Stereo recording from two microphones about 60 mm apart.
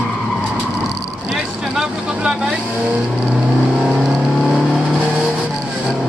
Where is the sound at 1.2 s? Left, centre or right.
Centre.